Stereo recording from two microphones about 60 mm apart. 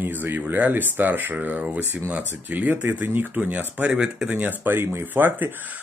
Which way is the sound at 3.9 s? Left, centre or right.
Centre.